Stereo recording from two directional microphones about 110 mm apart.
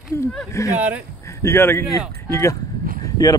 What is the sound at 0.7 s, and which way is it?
Speech, 15° right (ahead or behind).